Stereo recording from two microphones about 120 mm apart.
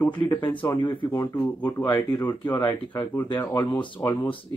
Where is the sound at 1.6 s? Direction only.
15° left (ahead or behind).